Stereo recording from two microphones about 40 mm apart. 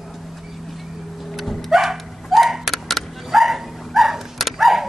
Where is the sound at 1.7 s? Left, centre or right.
Centre.